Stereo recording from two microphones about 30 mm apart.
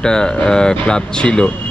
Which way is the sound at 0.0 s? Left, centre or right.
Left.